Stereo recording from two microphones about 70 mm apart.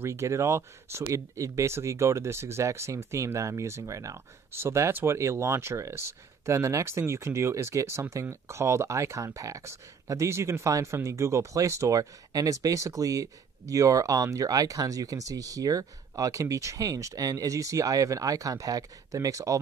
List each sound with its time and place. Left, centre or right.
0.0 s speech: right
4.5 s speech: right